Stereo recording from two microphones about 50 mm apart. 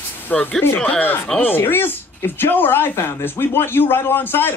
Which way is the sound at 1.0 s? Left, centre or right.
Left.